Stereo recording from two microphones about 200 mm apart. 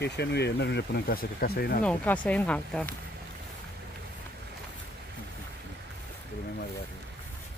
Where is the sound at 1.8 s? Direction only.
5° left (ahead or behind).